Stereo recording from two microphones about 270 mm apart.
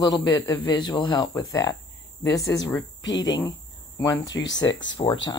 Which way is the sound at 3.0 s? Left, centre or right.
Left.